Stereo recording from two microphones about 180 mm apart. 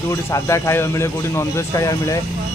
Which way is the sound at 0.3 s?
15° left (ahead or behind).